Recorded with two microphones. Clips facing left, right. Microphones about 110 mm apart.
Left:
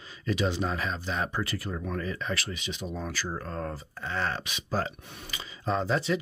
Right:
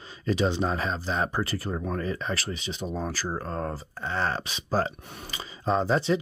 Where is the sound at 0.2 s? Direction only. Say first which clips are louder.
Right 3 dB; 35° right (ahead or behind).